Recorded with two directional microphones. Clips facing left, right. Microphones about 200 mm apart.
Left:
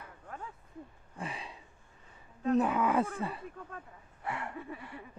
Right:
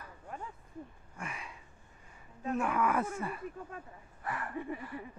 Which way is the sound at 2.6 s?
25° left (ahead or behind).